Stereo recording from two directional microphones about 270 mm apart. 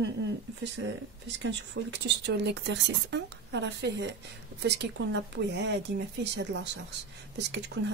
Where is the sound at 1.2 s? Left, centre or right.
Right.